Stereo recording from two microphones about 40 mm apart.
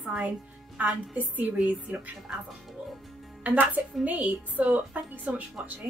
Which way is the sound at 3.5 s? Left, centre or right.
Right.